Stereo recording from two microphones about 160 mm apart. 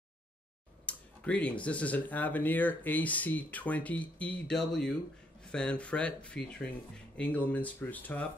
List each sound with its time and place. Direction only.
0.8 s speech: 10° left (ahead or behind)